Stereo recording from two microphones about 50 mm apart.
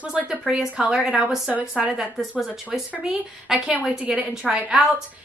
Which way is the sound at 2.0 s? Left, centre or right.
Centre.